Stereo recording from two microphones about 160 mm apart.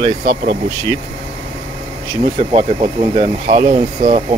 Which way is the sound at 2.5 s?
45° right (ahead or behind).